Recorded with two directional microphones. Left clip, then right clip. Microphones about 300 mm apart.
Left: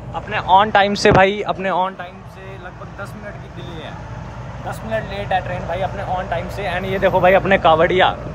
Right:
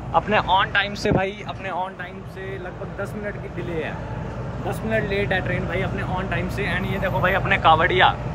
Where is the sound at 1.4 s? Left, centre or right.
Left.